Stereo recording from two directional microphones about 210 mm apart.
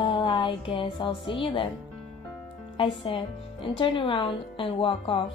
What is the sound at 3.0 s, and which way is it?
A woman's voice, 25° left (ahead or behind).